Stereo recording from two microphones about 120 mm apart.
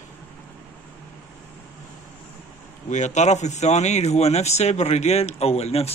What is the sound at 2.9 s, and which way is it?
Speech, 80° left.